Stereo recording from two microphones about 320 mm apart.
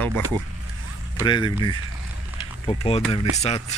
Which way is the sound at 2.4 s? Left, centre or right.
Centre.